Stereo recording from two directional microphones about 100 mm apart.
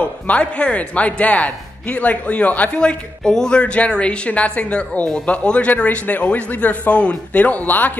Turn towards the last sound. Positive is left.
turn(degrees=15)  # may be behind; listen again after turning